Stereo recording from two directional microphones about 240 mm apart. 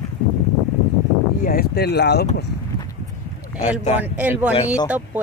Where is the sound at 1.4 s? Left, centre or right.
Left.